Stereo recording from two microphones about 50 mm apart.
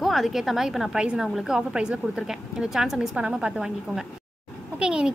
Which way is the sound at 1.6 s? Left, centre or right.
Centre.